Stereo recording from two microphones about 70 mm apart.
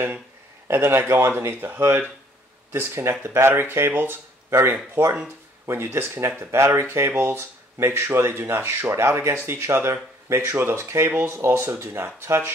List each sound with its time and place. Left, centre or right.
0.7 s speech: right